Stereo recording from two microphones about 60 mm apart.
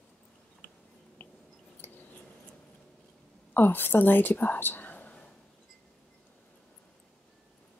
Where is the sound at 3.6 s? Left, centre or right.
Left.